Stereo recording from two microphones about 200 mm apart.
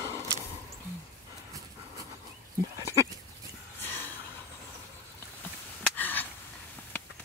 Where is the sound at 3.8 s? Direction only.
10° left (ahead or behind).